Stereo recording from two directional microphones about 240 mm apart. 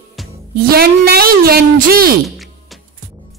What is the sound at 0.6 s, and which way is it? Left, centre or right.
A woman's voice, right.